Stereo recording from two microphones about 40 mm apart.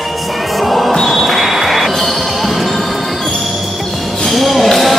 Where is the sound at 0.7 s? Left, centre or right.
Centre.